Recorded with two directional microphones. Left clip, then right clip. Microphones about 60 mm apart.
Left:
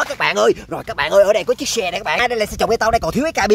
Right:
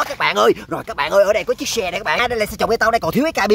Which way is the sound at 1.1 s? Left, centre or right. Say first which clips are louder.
Left 2 dB; left.